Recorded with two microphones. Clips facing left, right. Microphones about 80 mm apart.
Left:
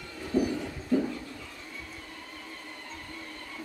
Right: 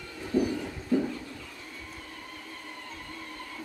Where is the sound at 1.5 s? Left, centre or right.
Centre.